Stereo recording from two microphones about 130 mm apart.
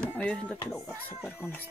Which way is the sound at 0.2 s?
10° left (ahead or behind).